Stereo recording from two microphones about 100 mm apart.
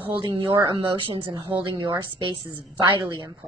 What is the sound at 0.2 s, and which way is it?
Speech, 40° right (ahead or behind).